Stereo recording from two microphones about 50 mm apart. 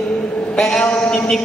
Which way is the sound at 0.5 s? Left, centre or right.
Centre.